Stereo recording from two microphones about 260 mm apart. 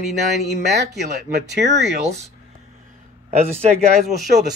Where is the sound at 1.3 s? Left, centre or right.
Right.